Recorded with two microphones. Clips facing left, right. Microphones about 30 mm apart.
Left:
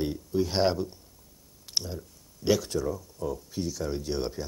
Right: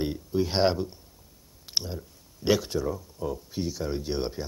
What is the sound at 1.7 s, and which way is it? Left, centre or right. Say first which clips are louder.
Clicking: right 1 dB; centre.